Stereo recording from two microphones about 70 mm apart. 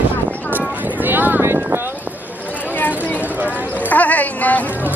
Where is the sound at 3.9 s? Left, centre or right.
Left.